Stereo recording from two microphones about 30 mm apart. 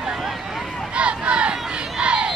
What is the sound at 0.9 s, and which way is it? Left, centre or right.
Crowd, right.